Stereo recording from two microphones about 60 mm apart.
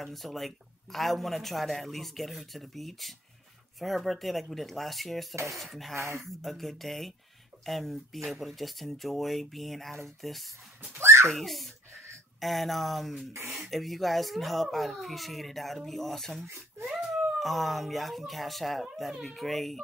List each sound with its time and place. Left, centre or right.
0.0 s a man's voice: centre
5.3 s dishes: right
5.6 s a man's voice: centre
5.9 s speech: right
6.4 s a man's voice: centre
11.0 s a child's voice: right
11.3 s a man's voice: centre
13.3 s speech: right
13.7 s a man's voice: centre